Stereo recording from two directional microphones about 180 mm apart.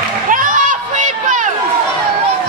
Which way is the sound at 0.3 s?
45° right (ahead or behind).